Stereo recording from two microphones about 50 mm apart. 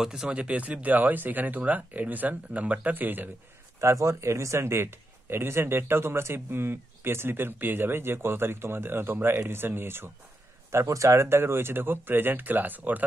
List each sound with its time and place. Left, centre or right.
0.0 s speech: centre
0.3 s speech: right
3.8 s a man's voice: right
10.7 s a man's voice: right